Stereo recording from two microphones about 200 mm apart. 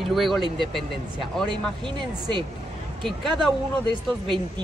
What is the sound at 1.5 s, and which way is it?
Speech, 25° right (ahead or behind).